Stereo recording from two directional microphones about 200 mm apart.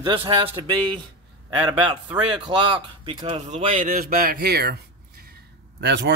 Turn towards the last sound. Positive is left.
turn(degrees=-60)  # may be behind; listen again after turning